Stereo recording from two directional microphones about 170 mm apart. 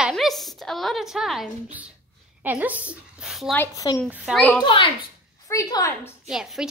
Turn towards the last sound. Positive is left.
turn(degrees=0)  # may be behind; listen again after turning